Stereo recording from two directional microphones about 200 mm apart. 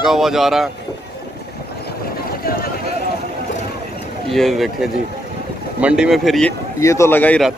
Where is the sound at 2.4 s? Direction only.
50° left (ahead or behind).